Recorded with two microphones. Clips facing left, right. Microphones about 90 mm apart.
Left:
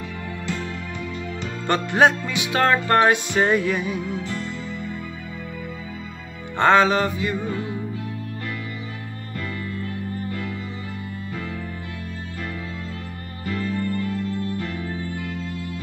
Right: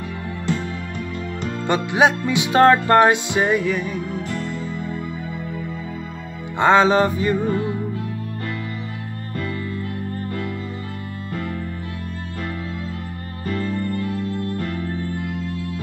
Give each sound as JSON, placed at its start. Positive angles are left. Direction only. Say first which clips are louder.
{"t": 1.7, "sound": "music", "louder": "even", "side_deg": -10}
{"t": 2.3, "sound": "music", "louder": "right 6 dB", "side_deg": -30}
{"t": 3.4, "sound": "music", "louder": "even", "side_deg": 0}
{"t": 6.6, "sound": "music", "louder": "right 2 dB", "side_deg": -20}
{"t": 10.1, "sound": "music", "louder": "right 2 dB", "side_deg": -50}